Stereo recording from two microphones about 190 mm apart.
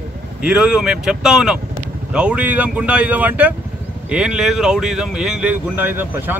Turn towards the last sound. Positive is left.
turn(degrees=-10)  # may be behind; listen again after turning